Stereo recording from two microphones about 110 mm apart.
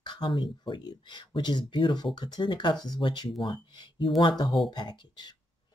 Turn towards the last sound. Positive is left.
turn(degrees=40)  # may be behind; listen again after turning